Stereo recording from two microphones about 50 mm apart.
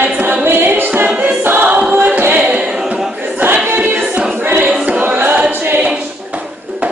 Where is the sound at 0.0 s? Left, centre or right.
Right.